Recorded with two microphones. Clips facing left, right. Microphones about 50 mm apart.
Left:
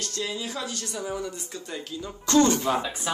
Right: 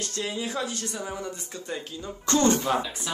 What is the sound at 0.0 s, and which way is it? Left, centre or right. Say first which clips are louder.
Speech: right 1 dB; right.